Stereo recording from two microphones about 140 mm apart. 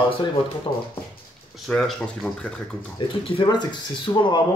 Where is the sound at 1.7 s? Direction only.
5° left (ahead or behind).